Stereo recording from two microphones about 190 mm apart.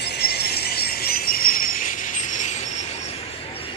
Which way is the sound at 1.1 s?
50° left (ahead or behind).